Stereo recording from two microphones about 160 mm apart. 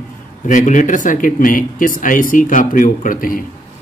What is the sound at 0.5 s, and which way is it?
Speech, 50° left (ahead or behind).